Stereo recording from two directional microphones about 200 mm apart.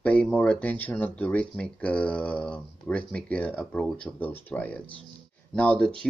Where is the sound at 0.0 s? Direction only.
5° left (ahead or behind).